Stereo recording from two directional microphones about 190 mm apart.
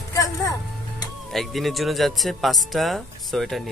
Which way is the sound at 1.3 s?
Centre (ahead or behind).